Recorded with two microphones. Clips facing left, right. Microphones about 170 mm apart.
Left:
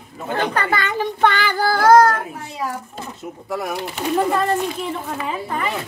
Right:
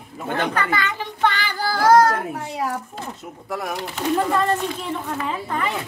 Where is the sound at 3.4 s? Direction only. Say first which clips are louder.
Left 2 dB; 5° left (ahead or behind).